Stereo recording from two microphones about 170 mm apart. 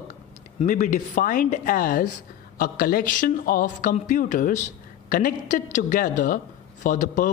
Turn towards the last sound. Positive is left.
turn(degrees=50)  # may be behind; listen again after turning